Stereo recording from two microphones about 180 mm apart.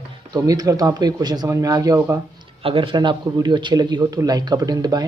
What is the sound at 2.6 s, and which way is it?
A man's voice, 30° right (ahead or behind).